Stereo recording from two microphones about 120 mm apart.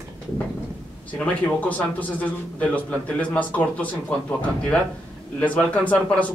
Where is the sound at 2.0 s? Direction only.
10° left (ahead or behind).